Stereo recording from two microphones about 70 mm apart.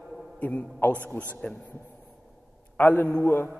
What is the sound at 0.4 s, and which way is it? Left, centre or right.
A man's voice, left.